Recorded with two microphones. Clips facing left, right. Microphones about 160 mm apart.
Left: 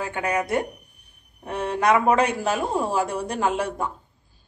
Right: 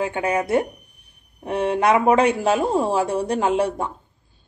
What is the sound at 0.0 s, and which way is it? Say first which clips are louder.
A man's voice: right 3 dB; 25° right (ahead or behind).